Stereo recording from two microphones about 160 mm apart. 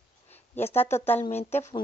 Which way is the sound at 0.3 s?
40° left (ahead or behind).